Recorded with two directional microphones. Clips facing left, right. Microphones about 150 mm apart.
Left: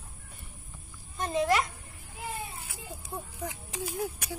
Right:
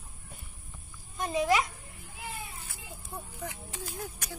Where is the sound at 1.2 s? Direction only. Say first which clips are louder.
Even; 5° right (ahead or behind).